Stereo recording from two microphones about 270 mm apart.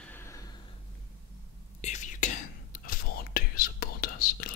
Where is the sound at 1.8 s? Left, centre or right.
Left.